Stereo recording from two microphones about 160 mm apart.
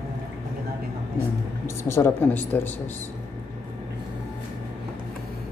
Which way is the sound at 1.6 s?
15° left (ahead or behind).